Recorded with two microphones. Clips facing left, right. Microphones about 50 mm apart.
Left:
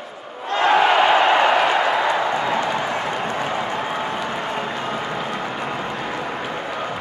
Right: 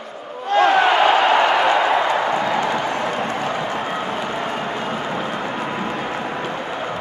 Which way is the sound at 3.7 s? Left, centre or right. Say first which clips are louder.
Right 1 dB; centre.